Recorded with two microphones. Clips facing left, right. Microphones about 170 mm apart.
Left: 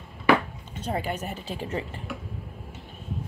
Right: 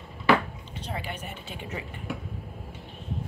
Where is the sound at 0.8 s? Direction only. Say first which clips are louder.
Left 7 dB; 45° left (ahead or behind).